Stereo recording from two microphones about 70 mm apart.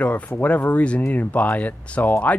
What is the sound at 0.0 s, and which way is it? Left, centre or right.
Speech, left.